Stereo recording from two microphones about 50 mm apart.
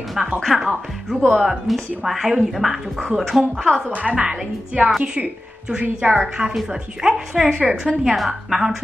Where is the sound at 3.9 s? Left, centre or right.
Right.